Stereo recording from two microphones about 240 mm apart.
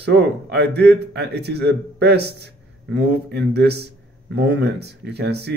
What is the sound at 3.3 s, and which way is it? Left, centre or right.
Speech, right.